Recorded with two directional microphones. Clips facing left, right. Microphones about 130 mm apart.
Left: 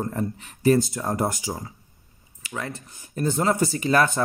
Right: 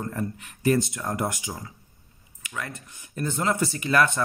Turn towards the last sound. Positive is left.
turn(degrees=35)  # may be behind; listen again after turning